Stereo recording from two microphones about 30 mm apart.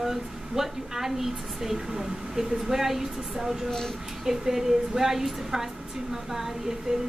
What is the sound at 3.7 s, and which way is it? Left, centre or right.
Speech, centre.